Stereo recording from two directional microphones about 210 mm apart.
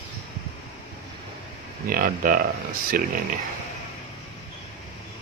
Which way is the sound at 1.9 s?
45° right (ahead or behind).